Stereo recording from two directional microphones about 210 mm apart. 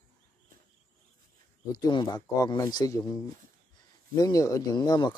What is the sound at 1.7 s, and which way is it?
Speech, 20° left (ahead or behind).